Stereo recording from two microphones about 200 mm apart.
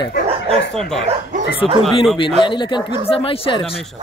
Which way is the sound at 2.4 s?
25° left (ahead or behind).